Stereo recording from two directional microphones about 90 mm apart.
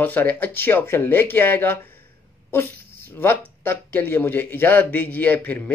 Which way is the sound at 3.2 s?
25° left (ahead or behind).